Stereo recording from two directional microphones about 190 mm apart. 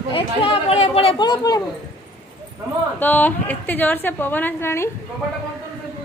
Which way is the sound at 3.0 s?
10° left (ahead or behind).